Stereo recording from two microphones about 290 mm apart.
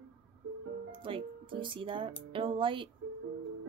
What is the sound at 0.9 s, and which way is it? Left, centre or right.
Speech, centre.